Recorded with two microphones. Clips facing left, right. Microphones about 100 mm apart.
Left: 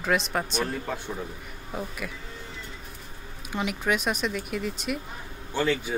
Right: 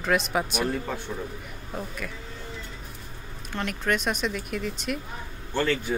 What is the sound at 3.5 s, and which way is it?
A woman's voice, 5° left (ahead or behind).